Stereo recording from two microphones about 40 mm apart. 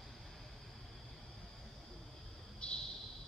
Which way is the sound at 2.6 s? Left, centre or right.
Left.